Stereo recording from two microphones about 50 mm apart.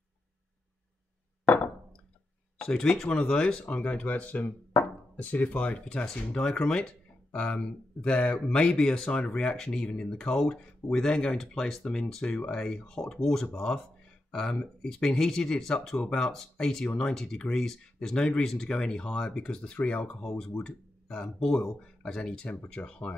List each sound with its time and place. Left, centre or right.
2.6 s speech: centre
6.3 s speech: centre